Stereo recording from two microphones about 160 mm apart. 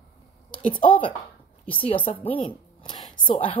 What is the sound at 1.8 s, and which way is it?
Speech, 35° left (ahead or behind).